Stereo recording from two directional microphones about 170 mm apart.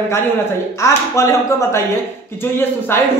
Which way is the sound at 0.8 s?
15° left (ahead or behind).